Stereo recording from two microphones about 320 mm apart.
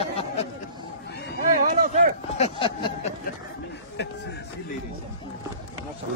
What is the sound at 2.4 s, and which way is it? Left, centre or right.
Speech, centre.